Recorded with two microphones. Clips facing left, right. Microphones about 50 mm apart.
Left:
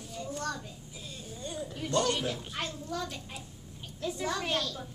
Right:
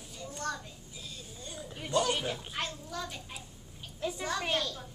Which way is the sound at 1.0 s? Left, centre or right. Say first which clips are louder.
Left 5 dB; left.